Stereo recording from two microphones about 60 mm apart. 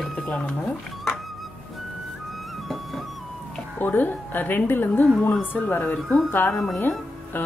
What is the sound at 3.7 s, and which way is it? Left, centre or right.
A woman's voice, left.